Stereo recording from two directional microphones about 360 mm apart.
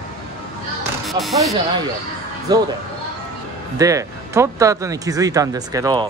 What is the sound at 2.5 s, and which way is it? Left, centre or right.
Speech, centre.